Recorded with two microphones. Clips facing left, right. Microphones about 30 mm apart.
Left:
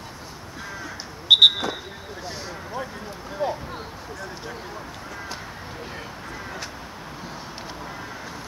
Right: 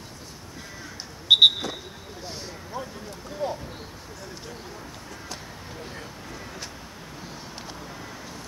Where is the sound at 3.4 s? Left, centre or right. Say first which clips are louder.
Left 3 dB; centre.